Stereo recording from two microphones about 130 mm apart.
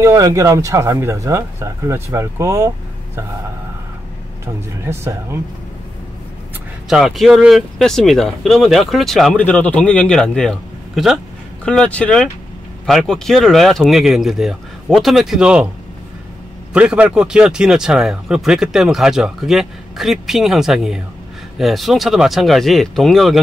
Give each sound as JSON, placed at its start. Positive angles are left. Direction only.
{"t": 0.0, "sound": "speech", "side_deg": -25}
{"t": 4.8, "sound": "speech", "side_deg": -20}
{"t": 6.9, "sound": "speech", "side_deg": 0}
{"t": 9.4, "sound": "a man's voice", "side_deg": 10}
{"t": 16.7, "sound": "speech", "side_deg": -10}